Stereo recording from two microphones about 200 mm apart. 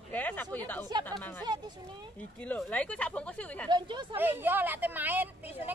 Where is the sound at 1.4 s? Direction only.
20° right (ahead or behind).